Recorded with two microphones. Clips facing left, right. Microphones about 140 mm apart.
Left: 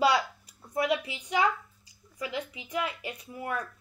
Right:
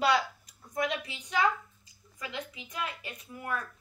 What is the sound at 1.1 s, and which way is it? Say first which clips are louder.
A child's voice: left 1 dB; 10° left (ahead or behind).